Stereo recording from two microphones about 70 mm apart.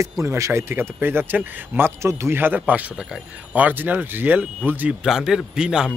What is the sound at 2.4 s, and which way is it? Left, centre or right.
Speech, right.